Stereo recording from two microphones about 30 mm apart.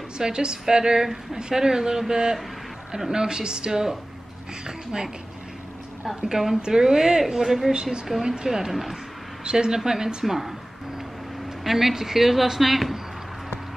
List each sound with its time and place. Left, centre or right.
0.2 s a woman's voice: right
6.3 s a woman's voice: centre
7.7 s a woman's voice: right
8.5 s a woman's voice: centre
9.4 s a woman's voice: right
10.2 s a woman's voice: centre
11.6 s a woman's voice: centre